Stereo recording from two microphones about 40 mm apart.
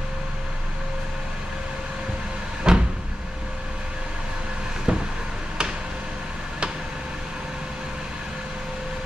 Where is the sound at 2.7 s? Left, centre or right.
Right.